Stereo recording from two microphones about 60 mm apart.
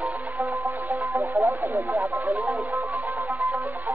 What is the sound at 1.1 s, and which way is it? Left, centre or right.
Radio, right.